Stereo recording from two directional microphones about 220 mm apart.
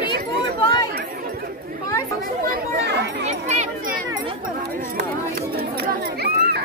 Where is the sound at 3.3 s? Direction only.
30° right (ahead or behind).